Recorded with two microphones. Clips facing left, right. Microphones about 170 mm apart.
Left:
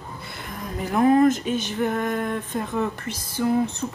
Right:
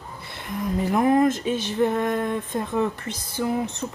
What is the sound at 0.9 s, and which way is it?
Speech, 20° right (ahead or behind).